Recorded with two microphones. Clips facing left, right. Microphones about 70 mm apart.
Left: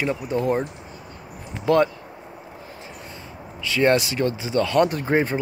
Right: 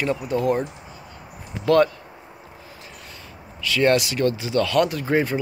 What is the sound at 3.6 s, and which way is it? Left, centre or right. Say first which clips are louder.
Speech: even; left.